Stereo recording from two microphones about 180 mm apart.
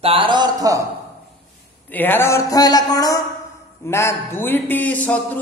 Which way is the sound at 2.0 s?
10° left (ahead or behind).